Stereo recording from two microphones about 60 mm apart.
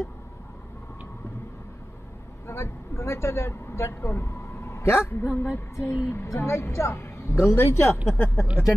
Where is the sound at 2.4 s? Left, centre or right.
Left.